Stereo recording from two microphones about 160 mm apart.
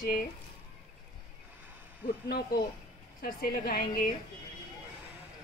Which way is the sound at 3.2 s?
75° left (ahead or behind).